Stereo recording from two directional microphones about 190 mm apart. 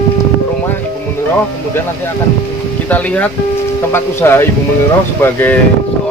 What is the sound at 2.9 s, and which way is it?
Speech, 10° left (ahead or behind).